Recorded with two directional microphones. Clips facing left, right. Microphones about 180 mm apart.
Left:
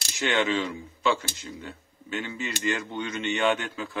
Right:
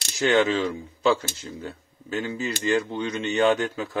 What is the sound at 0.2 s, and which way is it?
Speech, 40° right (ahead or behind).